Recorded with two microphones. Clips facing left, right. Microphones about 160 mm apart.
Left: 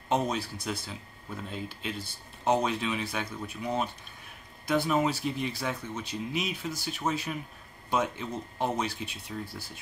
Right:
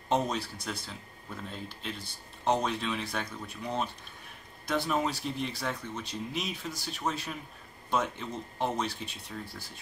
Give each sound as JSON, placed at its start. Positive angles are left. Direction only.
{"t": 0.1, "sound": "speech", "side_deg": 5}